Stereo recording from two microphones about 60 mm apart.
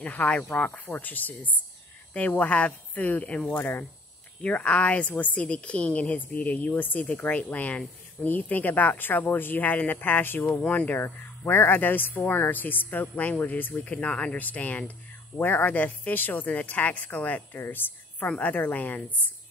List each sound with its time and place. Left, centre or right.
0.0 s speech: left
3.5 s speech: left